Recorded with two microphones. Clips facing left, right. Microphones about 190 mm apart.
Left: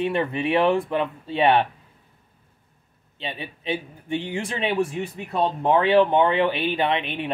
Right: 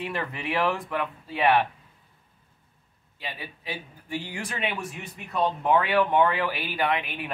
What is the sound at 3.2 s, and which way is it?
Speech, 25° left (ahead or behind).